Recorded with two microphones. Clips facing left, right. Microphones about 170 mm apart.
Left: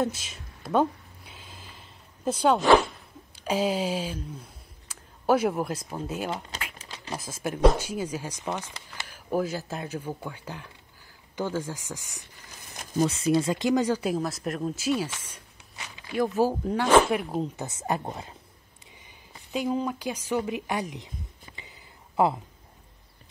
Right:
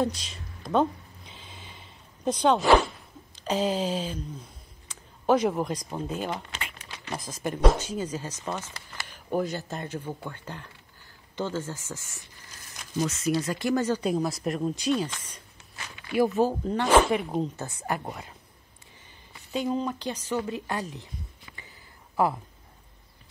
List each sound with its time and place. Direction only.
0.0 s a sound: 5° left (ahead or behind)
3.3 s speech: 10° left (ahead or behind)
9.0 s speech: 5° left (ahead or behind)
13.0 s speech: 30° left (ahead or behind); by 16.4 s centre (ahead or behind)
16.4 s speech: 10° left (ahead or behind)
17.6 s speech: 20° left (ahead or behind)
19.0 s speech: 10° left (ahead or behind)
21.5 s a sound: 20° left (ahead or behind)